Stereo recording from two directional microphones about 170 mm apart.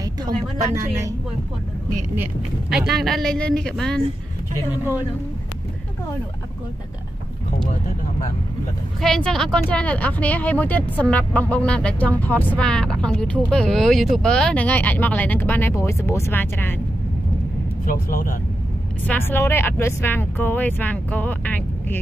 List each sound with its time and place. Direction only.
2.7 s speech: centre (ahead or behind)
9.0 s speech: centre (ahead or behind)
17.8 s speech: 55° left (ahead or behind)
19.0 s speech: 10° left (ahead or behind)